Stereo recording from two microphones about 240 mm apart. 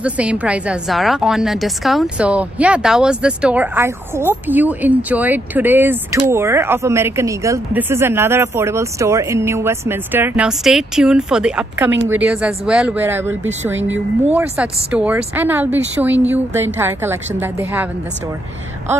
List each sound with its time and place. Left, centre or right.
0.0 s a woman's voice: centre
13.7 s speech: right
14.3 s a woman's voice: centre